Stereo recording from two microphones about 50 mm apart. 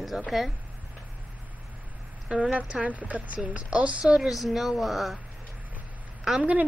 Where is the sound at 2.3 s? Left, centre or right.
Right.